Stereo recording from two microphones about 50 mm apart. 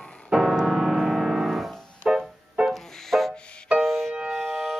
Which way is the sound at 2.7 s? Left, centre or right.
Centre.